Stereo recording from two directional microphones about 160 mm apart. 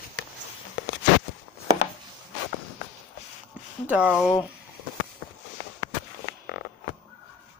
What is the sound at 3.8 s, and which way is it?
Speech, 10° right (ahead or behind).